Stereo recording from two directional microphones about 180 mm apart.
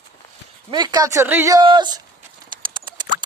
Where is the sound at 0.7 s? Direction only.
25° right (ahead or behind).